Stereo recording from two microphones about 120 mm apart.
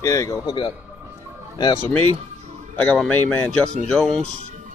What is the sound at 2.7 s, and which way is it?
Speech, 10° left (ahead or behind).